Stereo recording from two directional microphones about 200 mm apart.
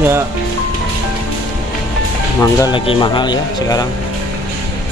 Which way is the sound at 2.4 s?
20° left (ahead or behind).